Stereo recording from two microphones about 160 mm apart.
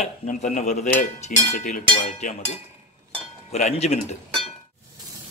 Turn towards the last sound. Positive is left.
turn(degrees=45)  # may be behind; listen again after turning